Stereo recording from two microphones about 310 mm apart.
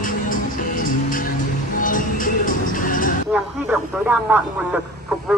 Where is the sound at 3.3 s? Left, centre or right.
Centre.